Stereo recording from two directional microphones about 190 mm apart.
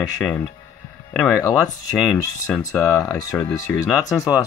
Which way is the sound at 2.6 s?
15° left (ahead or behind).